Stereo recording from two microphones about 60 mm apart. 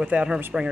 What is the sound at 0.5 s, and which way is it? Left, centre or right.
Speech, centre.